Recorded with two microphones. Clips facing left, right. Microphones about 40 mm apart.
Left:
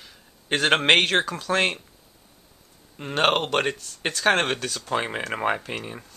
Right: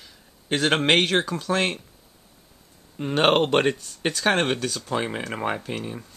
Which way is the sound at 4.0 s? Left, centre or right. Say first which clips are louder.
Left 3 dB; centre.